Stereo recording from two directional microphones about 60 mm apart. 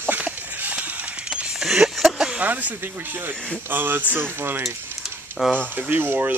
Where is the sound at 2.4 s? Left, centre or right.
Right.